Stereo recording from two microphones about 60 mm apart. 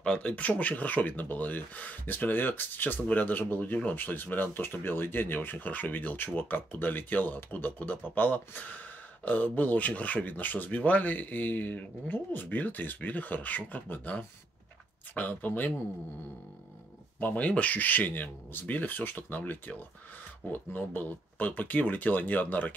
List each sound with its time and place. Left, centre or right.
0.0 s speech: centre
17.2 s speech: left